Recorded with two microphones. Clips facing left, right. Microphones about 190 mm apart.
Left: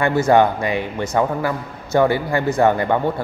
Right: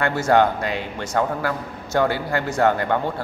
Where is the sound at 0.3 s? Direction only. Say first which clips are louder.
Left 1 dB; 10° left (ahead or behind).